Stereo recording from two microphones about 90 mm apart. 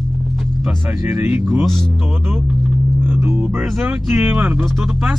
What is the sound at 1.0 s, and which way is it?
Speech, 25° right (ahead or behind).